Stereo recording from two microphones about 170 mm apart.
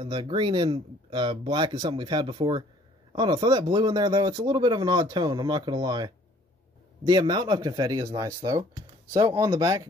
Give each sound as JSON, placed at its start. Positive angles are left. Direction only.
{"t": 0.0, "sound": "speech", "side_deg": -30}
{"t": 9.1, "sound": "speech", "side_deg": -20}